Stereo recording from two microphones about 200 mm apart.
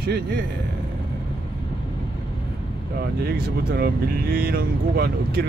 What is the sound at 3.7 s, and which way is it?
Speech, 50° right (ahead or behind).